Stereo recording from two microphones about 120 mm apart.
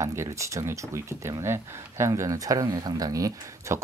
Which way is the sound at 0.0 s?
25° right (ahead or behind).